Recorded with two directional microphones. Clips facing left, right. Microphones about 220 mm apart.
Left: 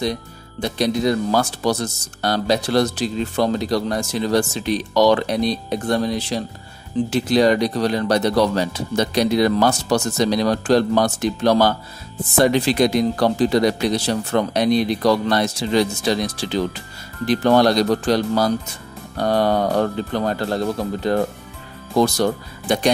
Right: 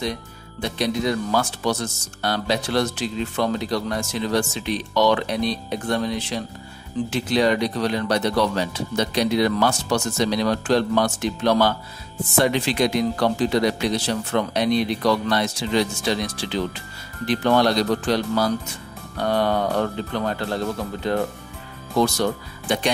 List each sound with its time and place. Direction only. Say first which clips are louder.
0.0 s speech: left 4 dB; 35° left (ahead or behind)